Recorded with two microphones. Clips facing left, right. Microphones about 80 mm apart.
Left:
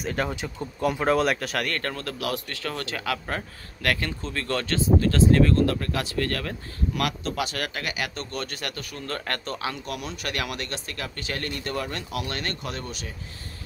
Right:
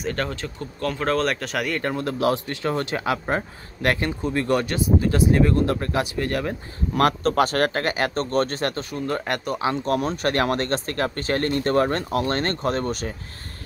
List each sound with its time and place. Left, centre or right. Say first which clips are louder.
0.0 s speech: right 1 dB; centre
1.8 s speech: right 7 dB; centre
6.9 s speech: right 9 dB; right
8.9 s speech: right 6 dB; centre
9.7 s speech: right 14 dB; right